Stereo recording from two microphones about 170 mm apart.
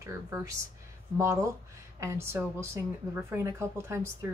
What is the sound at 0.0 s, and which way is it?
Speech, 20° right (ahead or behind).